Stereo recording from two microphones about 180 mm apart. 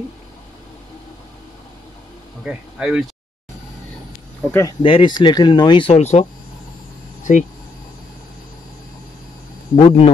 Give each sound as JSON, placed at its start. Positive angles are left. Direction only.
{"t": 2.4, "sound": "speech", "side_deg": -5}
{"t": 4.4, "sound": "speech", "side_deg": 10}
{"t": 4.6, "sound": "speech", "side_deg": 25}
{"t": 7.3, "sound": "speech", "side_deg": 45}
{"t": 9.8, "sound": "a man's voice", "side_deg": 35}